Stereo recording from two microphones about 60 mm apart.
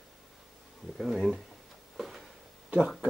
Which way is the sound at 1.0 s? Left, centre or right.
Centre.